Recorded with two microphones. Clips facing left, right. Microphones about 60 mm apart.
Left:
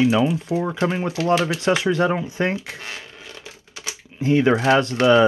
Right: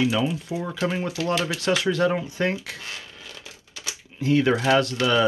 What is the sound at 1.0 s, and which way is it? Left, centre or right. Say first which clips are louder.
Speech: left 5 dB; left.